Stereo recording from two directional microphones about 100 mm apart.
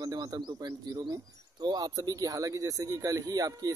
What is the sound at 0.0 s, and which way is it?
Speech, 40° right (ahead or behind).